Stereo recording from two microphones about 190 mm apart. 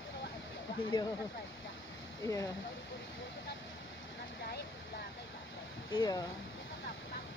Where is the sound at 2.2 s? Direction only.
15° left (ahead or behind).